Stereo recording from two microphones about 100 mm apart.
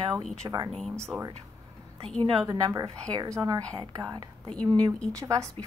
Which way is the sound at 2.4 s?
35° right (ahead or behind).